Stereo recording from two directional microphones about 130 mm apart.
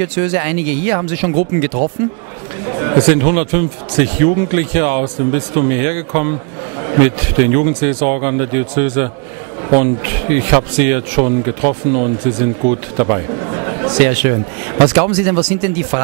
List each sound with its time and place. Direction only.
0.0 s speech: 15° right (ahead or behind)
2.7 s a sound: 25° right (ahead or behind)
3.0 s speech: 15° right (ahead or behind)
13.4 s chatter: 25° right (ahead or behind)
13.9 s speech: 15° right (ahead or behind)